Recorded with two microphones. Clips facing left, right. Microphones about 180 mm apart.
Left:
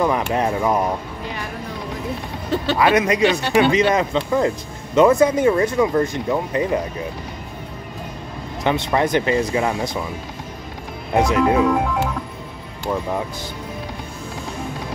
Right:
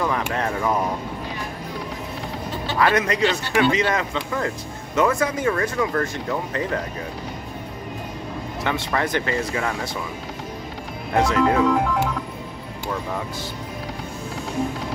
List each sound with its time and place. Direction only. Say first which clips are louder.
0.0 s speech: left 5 dB; 15° left (ahead or behind)
2.5 s speech: left 10 dB; 70° left (ahead or behind)
2.8 s speech: left 3 dB; 15° left (ahead or behind)
8.6 s speech: left 6 dB; 20° left (ahead or behind)
11.1 s speech: left 2 dB; 15° left (ahead or behind)